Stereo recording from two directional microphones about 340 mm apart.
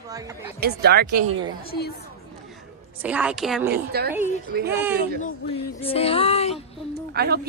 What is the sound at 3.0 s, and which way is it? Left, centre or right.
Speech, centre.